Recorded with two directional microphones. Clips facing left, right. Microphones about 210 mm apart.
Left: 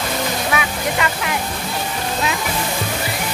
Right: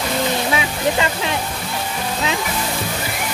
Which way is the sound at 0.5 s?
25° right (ahead or behind).